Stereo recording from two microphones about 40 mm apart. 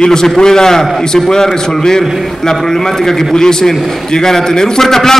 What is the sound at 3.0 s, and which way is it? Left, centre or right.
A man's voice, centre.